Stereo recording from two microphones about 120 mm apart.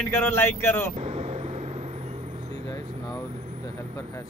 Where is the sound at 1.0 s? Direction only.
60° right (ahead or behind).